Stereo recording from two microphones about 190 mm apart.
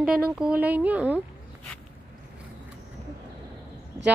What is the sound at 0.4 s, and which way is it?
Speech, 5° right (ahead or behind).